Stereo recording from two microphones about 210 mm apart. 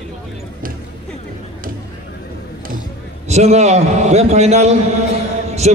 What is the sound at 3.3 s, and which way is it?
A man's voice, 30° right (ahead or behind).